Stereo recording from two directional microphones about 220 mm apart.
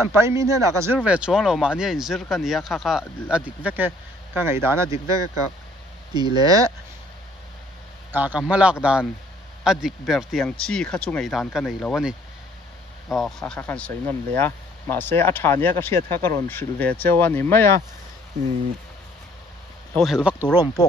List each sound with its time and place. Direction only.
0.0 s a man's voice: 10° right (ahead or behind)
8.1 s a man's voice: 5° right (ahead or behind); by 17.6 s 10° left (ahead or behind)
20.0 s speech: 5° right (ahead or behind)
20.3 s speech: 15° left (ahead or behind)